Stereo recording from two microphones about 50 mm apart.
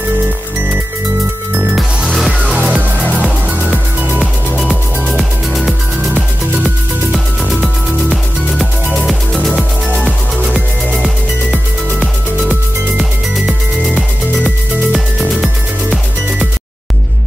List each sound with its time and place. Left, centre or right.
3.4 s music: right
4.6 s music: left
5.1 s music: centre
6.1 s music: right
9.0 s music: centre
13.8 s music: left
14.9 s music: centre